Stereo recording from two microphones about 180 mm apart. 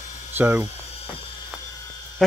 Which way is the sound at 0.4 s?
10° right (ahead or behind).